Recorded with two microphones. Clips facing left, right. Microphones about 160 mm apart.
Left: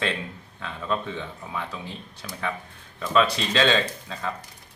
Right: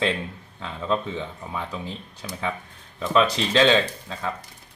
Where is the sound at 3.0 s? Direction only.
20° right (ahead or behind).